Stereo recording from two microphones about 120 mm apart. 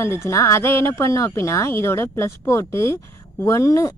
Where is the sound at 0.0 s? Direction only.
25° left (ahead or behind).